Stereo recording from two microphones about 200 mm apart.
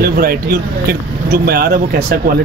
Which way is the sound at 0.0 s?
50° right (ahead or behind).